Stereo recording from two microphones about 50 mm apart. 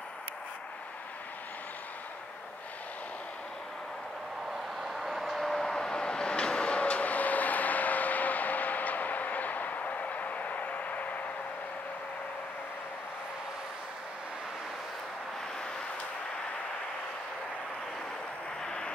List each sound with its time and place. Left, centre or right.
4.8 s vehicle: centre; by 11.1 s left
18.6 s vehicle: centre